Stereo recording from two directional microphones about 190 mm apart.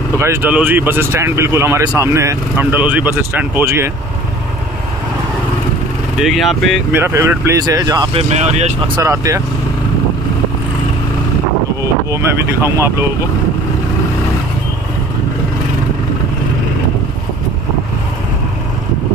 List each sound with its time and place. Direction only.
0.2 s speech: 10° right (ahead or behind)
6.1 s speech: centre (ahead or behind)
6.9 s speech: 15° right (ahead or behind); by 8.9 s 35° right (ahead or behind)
9.0 s speech: 15° right (ahead or behind)
11.8 s speech: 15° right (ahead or behind)